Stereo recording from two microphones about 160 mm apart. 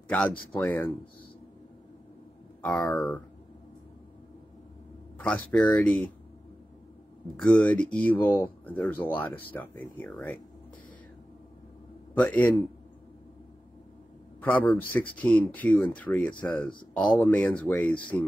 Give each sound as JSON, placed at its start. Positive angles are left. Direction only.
{"t": 0.1, "sound": "speech", "side_deg": 5}
{"t": 2.6, "sound": "speech", "side_deg": 5}
{"t": 5.2, "sound": "speech", "side_deg": 5}
{"t": 7.3, "sound": "speech", "side_deg": 5}
{"t": 12.1, "sound": "speech", "side_deg": 10}
{"t": 14.4, "sound": "speech", "side_deg": 10}
{"t": 17.9, "sound": "speech", "side_deg": 30}